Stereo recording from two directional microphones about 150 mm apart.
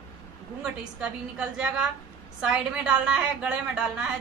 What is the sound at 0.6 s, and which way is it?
A woman's voice, 5° right (ahead or behind).